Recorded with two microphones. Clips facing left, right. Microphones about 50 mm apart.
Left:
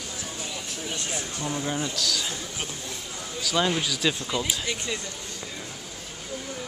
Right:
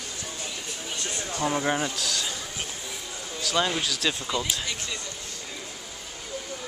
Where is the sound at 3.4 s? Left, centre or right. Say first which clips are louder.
Left 1 dB; centre.